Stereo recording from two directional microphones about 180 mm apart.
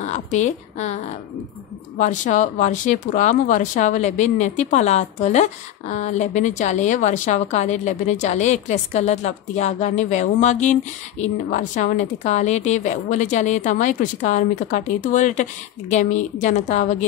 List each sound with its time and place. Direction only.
0.0 s a woman's voice: 40° left (ahead or behind)
2.0 s speech: 40° left (ahead or behind)